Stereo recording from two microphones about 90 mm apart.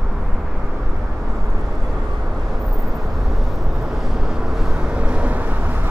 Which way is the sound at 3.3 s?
Centre (ahead or behind).